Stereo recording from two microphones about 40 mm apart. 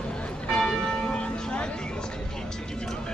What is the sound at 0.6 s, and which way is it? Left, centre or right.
Church bell, centre.